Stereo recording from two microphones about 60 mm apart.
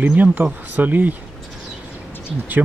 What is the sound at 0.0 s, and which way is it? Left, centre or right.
Speech, right.